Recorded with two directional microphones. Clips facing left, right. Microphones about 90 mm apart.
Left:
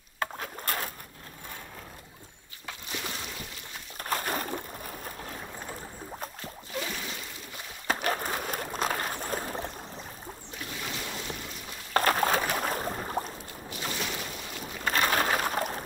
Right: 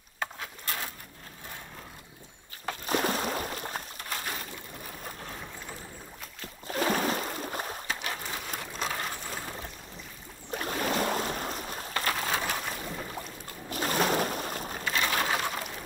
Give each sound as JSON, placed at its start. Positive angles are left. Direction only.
{"t": 0.7, "sound": "a sound", "side_deg": 50}
{"t": 2.6, "sound": "boat", "side_deg": -50}
{"t": 4.1, "sound": "a sound", "side_deg": 45}
{"t": 6.7, "sound": "boat", "side_deg": -45}
{"t": 7.9, "sound": "boat", "side_deg": 45}
{"t": 10.5, "sound": "boat", "side_deg": -50}
{"t": 11.9, "sound": "a sound", "side_deg": 45}
{"t": 13.7, "sound": "boat", "side_deg": -45}
{"t": 14.9, "sound": "bird", "side_deg": 45}